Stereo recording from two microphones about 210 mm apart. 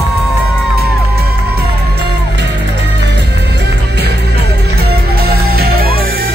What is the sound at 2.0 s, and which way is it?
Music, 55° right (ahead or behind).